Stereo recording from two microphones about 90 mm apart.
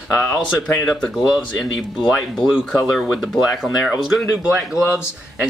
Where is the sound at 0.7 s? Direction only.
5° left (ahead or behind).